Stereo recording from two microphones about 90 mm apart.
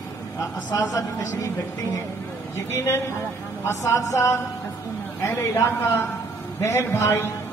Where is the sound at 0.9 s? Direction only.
35° left (ahead or behind).